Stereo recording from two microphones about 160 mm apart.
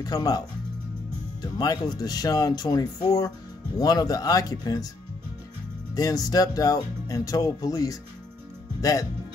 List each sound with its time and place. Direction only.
0.0 s speech: 25° left (ahead or behind)
1.4 s speech: 25° left (ahead or behind)
5.9 s speech: 20° left (ahead or behind)